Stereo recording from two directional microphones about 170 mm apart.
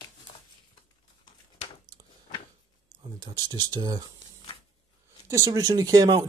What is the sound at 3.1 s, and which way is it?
Speech, 20° right (ahead or behind).